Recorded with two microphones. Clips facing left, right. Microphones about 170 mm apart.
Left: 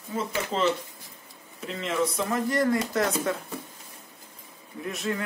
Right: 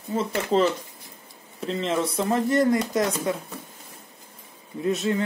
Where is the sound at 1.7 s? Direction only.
30° right (ahead or behind).